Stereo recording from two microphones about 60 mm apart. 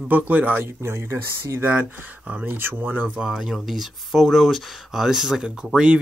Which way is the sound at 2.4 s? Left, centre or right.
Right.